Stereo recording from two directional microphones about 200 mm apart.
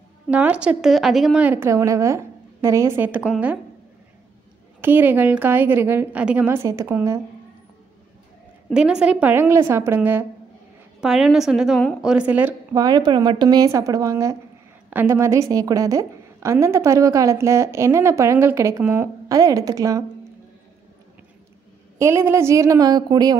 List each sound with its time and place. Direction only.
0.3 s a woman's voice: 5° right (ahead or behind)
4.8 s a woman's voice: 10° right (ahead or behind)
8.6 s a woman's voice: 5° right (ahead or behind)
12.7 s a woman's voice: 20° right (ahead or behind)
21.9 s a woman's voice: 15° right (ahead or behind)